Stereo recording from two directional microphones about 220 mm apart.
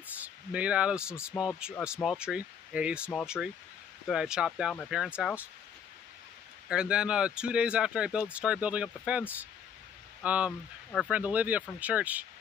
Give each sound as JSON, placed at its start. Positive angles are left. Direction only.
{"t": 0.2, "sound": "speech", "side_deg": -5}
{"t": 6.7, "sound": "speech", "side_deg": -5}
{"t": 10.2, "sound": "speech", "side_deg": -5}